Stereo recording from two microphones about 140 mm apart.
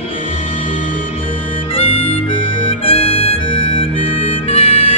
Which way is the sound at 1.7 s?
40° left (ahead or behind).